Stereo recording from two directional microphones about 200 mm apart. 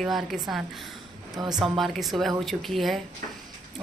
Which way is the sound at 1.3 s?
20° right (ahead or behind).